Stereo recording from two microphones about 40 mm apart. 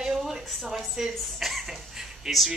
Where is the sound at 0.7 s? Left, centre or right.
Centre.